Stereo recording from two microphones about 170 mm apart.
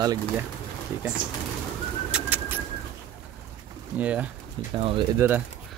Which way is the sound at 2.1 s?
10° right (ahead or behind).